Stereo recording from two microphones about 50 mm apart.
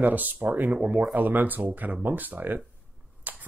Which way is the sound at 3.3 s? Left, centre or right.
Right.